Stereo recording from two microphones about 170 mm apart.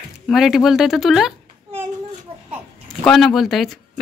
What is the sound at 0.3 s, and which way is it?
Speech, centre (ahead or behind).